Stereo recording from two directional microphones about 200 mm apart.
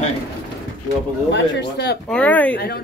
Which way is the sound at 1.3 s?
55° left (ahead or behind).